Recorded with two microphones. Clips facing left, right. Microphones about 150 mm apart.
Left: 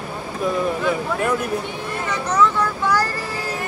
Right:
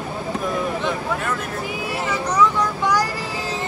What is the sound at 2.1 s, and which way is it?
Speech, 10° right (ahead or behind).